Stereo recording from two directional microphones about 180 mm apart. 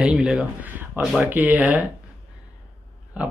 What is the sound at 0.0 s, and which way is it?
Speech, 5° right (ahead or behind).